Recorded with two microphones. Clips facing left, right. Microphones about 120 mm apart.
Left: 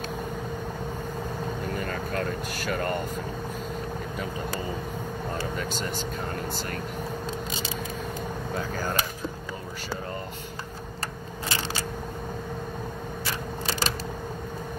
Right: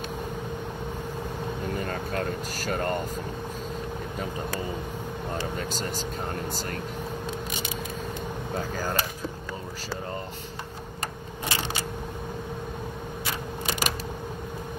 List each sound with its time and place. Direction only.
1.8 s speech: 40° right (ahead or behind)
5.6 s speech: 40° right (ahead or behind)
13.7 s a sound: 30° left (ahead or behind)